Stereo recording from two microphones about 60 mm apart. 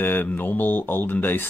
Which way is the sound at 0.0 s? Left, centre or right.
Left.